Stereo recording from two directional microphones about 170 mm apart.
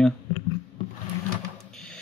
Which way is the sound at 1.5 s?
5° left (ahead or behind).